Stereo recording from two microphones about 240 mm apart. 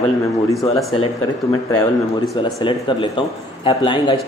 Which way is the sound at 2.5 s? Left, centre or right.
Centre.